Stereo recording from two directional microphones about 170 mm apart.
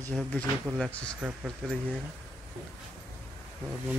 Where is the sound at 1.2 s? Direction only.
10° right (ahead or behind).